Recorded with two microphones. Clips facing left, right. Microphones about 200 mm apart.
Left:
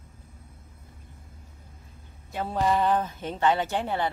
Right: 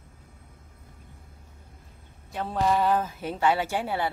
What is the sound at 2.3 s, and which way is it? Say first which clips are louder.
A woman's voice: even; centre (ahead or behind).